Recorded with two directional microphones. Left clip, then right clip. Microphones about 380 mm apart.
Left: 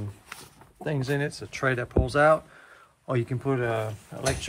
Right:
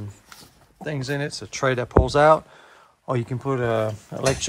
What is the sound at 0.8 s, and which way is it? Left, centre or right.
Speech, centre.